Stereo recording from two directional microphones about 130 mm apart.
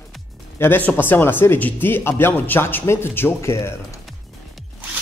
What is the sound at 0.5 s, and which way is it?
Speech, 15° left (ahead or behind).